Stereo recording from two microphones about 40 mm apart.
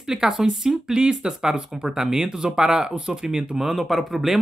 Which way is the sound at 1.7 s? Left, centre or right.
Centre.